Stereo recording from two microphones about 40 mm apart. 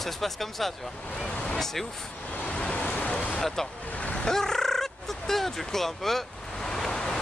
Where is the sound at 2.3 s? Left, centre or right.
Left.